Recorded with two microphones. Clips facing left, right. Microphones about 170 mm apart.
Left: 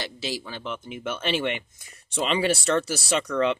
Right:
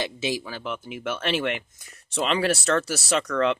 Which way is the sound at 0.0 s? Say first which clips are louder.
Right 4 dB; 15° right (ahead or behind).